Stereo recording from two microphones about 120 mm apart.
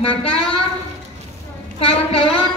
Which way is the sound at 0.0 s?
50° left (ahead or behind).